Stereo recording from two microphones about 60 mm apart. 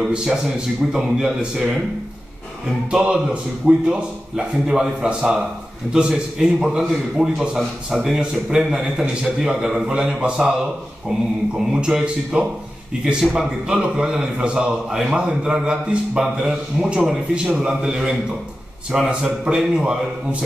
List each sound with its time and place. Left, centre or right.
0.1 s a man's voice: centre
2.9 s a man's voice: centre
11.5 s a man's voice: centre